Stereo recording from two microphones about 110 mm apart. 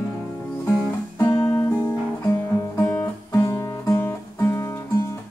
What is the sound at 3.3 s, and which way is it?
Music, 25° left (ahead or behind).